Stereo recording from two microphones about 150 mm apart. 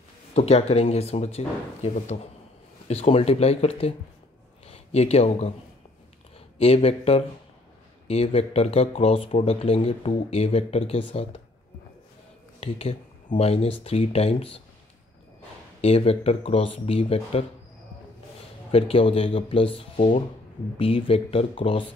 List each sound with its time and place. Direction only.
0.3 s speech: 45° left (ahead or behind)
4.9 s speech: 45° left (ahead or behind)
6.6 s speech: 40° left (ahead or behind)
12.5 s speech: 40° left (ahead or behind)
15.8 s speech: 40° left (ahead or behind)
18.7 s speech: 40° left (ahead or behind)